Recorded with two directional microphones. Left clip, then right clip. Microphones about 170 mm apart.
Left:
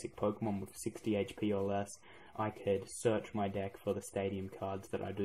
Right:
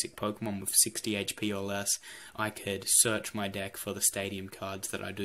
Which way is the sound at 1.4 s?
20° right (ahead or behind).